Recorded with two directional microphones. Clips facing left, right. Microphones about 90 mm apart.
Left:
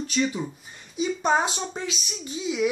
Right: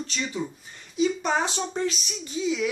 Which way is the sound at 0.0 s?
15° left (ahead or behind).